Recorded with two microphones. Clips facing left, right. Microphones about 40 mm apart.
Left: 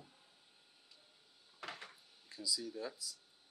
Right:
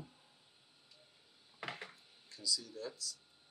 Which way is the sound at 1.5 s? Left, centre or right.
Centre.